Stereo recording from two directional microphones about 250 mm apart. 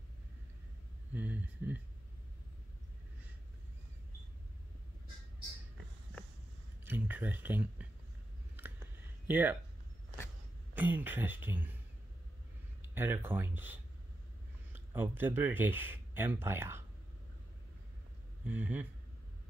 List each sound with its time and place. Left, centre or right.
1.1 s speech: centre
6.8 s a sound: centre
9.3 s speech: centre
10.7 s speech: centre
12.8 s speech: centre
18.4 s speech: centre